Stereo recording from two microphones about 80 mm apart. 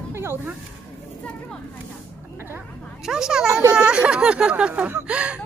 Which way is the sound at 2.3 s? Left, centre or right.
Right.